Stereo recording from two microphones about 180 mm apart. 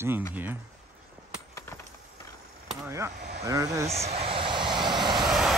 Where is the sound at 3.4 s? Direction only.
20° right (ahead or behind).